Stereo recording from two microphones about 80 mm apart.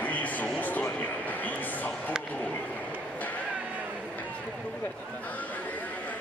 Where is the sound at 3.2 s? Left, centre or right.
Centre.